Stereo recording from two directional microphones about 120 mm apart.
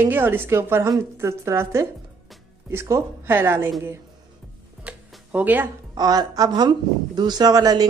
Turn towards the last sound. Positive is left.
turn(degrees=-30)  # may be behind; listen again after turning